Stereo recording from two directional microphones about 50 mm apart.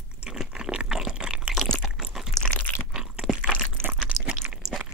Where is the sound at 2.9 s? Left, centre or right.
Centre.